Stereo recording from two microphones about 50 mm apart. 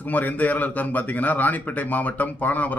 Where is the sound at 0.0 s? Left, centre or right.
Left.